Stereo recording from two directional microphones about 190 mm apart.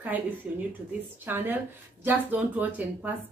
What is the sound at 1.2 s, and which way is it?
Speech, 10° right (ahead or behind).